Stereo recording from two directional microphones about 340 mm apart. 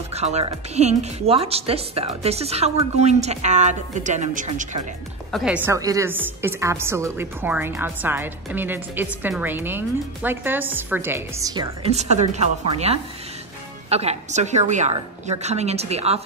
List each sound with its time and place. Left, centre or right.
0.1 s speech: centre
5.3 s a woman's voice: centre